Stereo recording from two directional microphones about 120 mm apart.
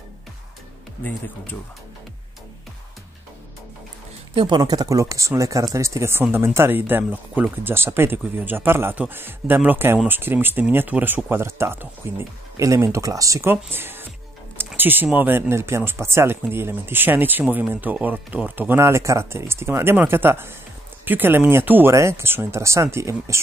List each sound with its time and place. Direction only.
4.4 s speech: 40° right (ahead or behind)